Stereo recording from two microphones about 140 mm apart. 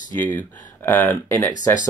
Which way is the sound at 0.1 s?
10° left (ahead or behind).